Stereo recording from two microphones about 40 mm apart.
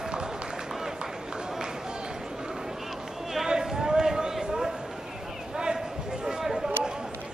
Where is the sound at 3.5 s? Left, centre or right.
Centre.